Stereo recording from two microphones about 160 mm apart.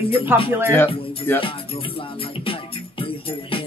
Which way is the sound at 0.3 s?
15° right (ahead or behind).